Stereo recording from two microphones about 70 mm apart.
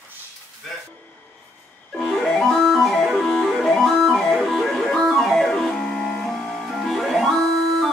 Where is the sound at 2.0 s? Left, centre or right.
Centre.